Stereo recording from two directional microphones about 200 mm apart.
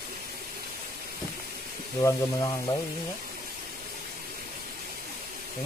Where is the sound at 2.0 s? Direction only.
20° left (ahead or behind).